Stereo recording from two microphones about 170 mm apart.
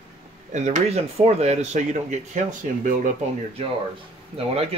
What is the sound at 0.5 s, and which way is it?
Speech, 45° right (ahead or behind).